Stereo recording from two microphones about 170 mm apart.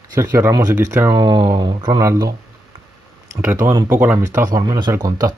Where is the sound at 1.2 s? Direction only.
25° right (ahead or behind).